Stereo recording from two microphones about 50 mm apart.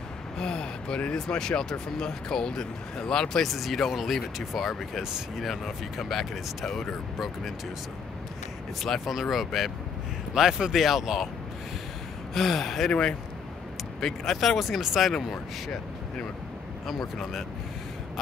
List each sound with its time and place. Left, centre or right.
0.4 s a sound: centre
1.1 s speech: centre
3.4 s speech: centre
8.8 s speech: centre
12.4 s speech: centre
14.0 s speech: centre
16.8 s speech: centre